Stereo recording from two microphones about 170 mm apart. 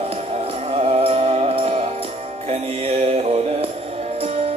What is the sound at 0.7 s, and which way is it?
Music, 35° right (ahead or behind).